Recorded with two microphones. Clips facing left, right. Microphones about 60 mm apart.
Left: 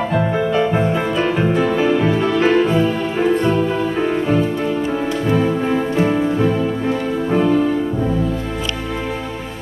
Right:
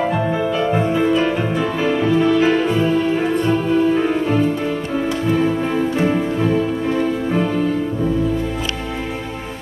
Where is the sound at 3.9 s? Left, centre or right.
Centre.